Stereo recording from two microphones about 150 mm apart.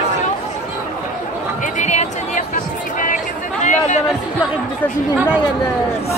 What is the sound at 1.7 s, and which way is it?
Music, 55° left (ahead or behind).